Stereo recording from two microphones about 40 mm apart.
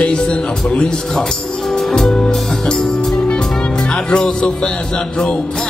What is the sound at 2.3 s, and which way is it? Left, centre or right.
Speech, centre.